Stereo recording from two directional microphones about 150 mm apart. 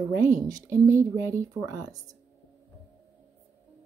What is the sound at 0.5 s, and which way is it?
Speech, 25° right (ahead or behind).